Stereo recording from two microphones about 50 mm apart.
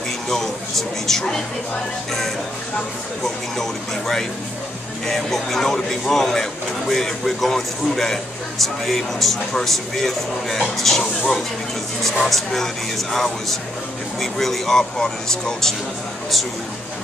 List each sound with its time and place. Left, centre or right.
0.3 s speech: centre
5.0 s a man's voice: centre